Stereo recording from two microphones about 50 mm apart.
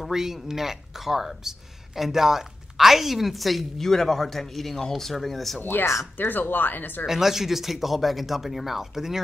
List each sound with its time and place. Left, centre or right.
0.0 s speech: centre
5.6 s speech: left
7.1 s speech: centre